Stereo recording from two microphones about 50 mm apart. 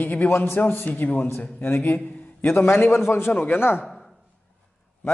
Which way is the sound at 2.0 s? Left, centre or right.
Left.